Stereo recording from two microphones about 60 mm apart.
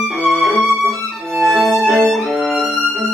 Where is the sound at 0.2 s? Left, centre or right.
Centre.